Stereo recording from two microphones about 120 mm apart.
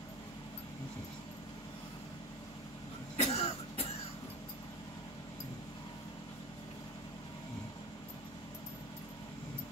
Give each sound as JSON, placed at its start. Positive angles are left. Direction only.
{"t": 3.2, "sound": "cough", "side_deg": 55}